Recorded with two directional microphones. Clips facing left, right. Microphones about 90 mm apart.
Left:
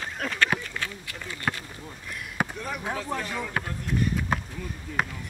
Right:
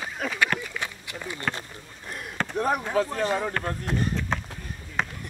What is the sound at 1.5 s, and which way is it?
Speech, 35° right (ahead or behind).